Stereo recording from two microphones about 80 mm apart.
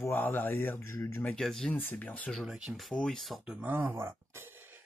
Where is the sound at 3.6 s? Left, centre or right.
Right.